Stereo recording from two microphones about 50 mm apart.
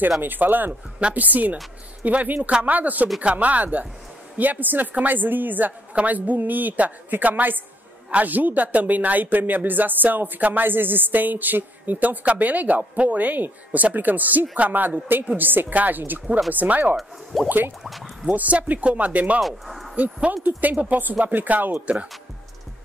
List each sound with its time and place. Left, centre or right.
0.2 s speech: right
16.9 s speech: centre
17.5 s a sound: right
17.8 s speech: centre
18.3 s speech: right
19.4 s speech: centre
20.7 s speech: right